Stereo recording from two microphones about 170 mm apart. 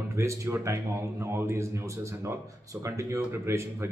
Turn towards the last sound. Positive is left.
turn(degrees=-15)  # may be behind; listen again after turning